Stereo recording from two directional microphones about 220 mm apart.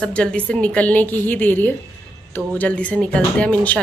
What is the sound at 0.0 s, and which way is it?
A woman's voice, 5° left (ahead or behind).